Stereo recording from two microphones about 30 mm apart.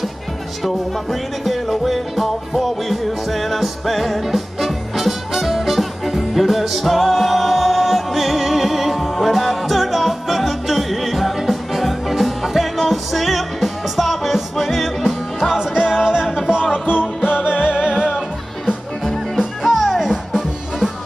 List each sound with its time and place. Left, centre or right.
1.4 s music: centre
15.5 s music: right
19.6 s music: centre